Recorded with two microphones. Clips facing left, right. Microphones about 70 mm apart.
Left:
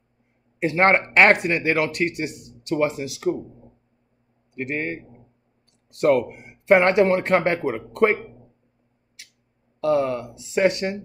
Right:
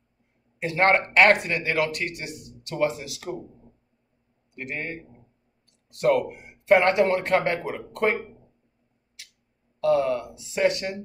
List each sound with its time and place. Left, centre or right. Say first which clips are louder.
0.6 s speech: left 3 dB; left
4.6 s a man's voice: left 6 dB; left
6.7 s speech: left 3 dB; left
9.8 s speech: left 1 dB; left